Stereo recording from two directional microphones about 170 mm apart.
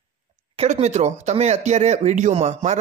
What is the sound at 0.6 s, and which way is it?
Speech, 40° right (ahead or behind).